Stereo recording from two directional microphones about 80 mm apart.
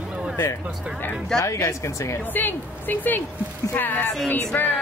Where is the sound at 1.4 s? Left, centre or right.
Left.